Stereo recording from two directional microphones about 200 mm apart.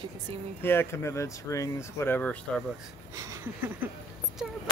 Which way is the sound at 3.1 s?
15° right (ahead or behind).